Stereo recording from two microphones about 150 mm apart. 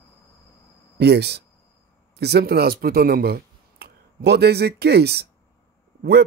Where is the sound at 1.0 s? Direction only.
90° right.